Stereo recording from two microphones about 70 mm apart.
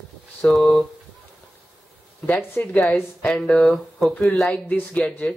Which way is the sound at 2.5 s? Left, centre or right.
Left.